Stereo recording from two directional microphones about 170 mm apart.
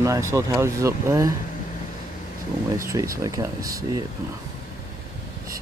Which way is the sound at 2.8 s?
20° right (ahead or behind).